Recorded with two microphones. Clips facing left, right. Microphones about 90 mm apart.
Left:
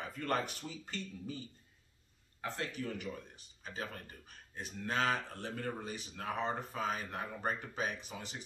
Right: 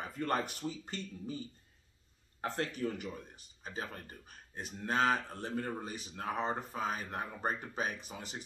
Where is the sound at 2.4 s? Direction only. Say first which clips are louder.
Right 4 dB; 40° right (ahead or behind).